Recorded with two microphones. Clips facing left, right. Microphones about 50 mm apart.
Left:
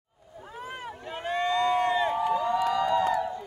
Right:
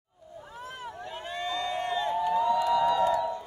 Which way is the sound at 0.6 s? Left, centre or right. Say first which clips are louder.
Left 2 dB; left.